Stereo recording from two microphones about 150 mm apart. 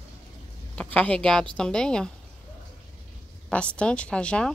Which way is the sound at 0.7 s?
10° left (ahead or behind).